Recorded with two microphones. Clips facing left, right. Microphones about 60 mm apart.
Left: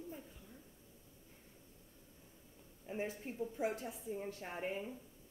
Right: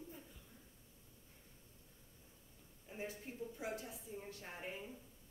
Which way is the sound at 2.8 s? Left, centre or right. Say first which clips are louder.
Left 6 dB; left.